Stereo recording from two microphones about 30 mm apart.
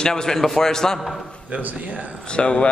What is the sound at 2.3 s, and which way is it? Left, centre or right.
Speech, left.